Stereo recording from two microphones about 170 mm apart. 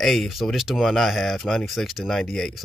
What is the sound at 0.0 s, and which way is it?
Speech, centre (ahead or behind).